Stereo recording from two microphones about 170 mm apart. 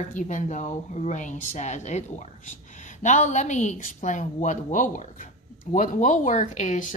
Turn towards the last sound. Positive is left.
turn(degrees=45)  # may be behind; listen again after turning